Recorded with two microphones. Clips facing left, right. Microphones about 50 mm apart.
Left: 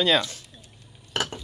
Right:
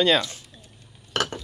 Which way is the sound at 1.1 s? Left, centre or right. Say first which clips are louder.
Right 2 dB; right.